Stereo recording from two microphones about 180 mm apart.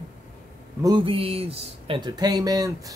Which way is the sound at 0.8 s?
25° right (ahead or behind).